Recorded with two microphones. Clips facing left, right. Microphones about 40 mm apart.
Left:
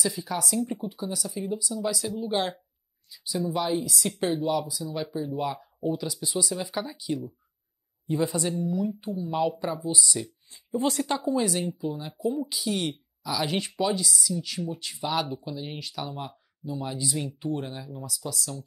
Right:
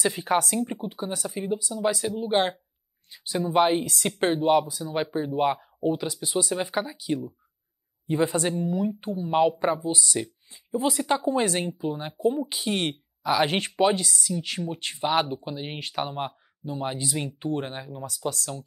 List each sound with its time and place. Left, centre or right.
0.0 s speech: right
3.1 s speech: right
10.7 s speech: right
11.1 s speech: right